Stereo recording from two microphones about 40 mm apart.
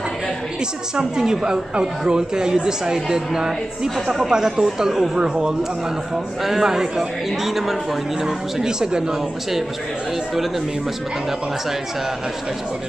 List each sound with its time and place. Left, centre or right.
0.9 s a man's voice: centre
6.1 s a man's voice: centre